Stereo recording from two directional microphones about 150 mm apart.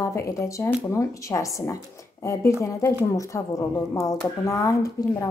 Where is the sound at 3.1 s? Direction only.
20° left (ahead or behind).